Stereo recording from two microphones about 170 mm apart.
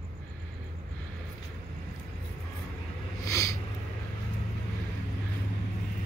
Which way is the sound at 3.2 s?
20° left (ahead or behind).